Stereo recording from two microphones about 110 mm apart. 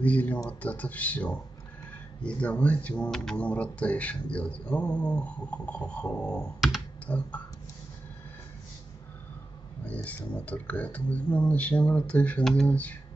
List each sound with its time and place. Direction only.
0.0 s speech: 15° left (ahead or behind)
9.8 s speech: 15° left (ahead or behind)